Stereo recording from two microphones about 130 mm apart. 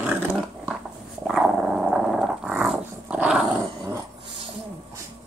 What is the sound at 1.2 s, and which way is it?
Dog, centre (ahead or behind).